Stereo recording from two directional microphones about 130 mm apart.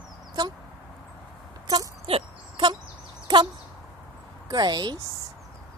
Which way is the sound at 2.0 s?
40° right (ahead or behind).